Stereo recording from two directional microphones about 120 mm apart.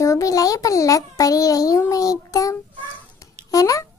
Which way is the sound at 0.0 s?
25° left (ahead or behind).